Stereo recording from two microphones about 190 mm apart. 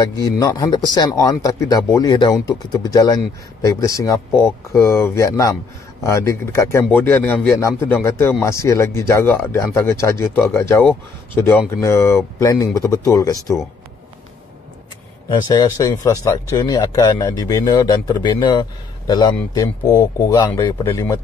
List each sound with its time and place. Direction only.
0.0 s a man's voice: 20° left (ahead or behind)
15.2 s a man's voice: 20° left (ahead or behind)